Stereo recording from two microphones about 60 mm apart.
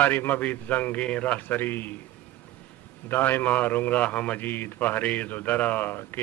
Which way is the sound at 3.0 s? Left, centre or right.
Left.